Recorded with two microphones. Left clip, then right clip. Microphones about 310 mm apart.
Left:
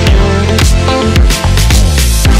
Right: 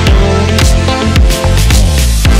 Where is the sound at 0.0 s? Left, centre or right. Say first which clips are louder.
Even; centre.